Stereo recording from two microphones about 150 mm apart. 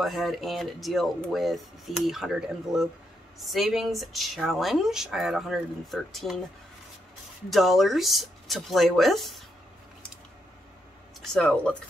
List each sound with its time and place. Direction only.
0.0 s speech: centre (ahead or behind)
7.4 s speech: centre (ahead or behind)
11.3 s speech: 5° left (ahead or behind)